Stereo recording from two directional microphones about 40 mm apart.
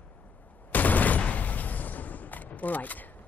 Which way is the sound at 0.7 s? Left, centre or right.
Left.